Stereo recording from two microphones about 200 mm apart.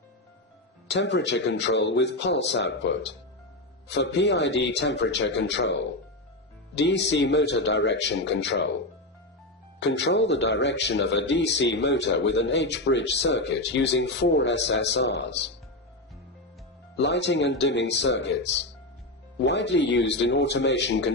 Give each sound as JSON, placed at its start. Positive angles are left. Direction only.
{"t": 0.8, "sound": "speech", "side_deg": 60}
{"t": 9.8, "sound": "speech", "side_deg": 60}
{"t": 16.9, "sound": "speech", "side_deg": 60}